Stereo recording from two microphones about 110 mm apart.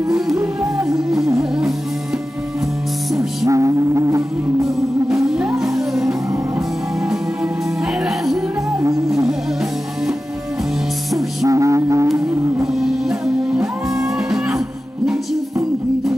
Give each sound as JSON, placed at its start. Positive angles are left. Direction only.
{"t": 3.2, "sound": "music", "side_deg": -30}
{"t": 5.6, "sound": "music", "side_deg": -5}
{"t": 11.4, "sound": "music", "side_deg": -30}
{"t": 13.9, "sound": "music", "side_deg": -5}